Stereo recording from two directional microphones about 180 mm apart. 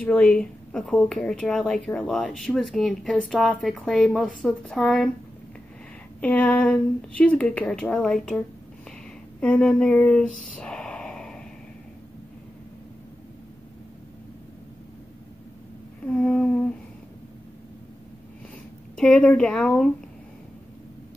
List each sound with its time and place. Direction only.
0.0 s speech: 10° left (ahead or behind)
6.2 s speech: 10° left (ahead or behind)
9.4 s speech: 5° left (ahead or behind)
16.1 s speech: 5° left (ahead or behind)
18.9 s speech: 5° left (ahead or behind)